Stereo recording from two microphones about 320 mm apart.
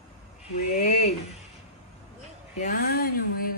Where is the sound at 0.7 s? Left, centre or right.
Left.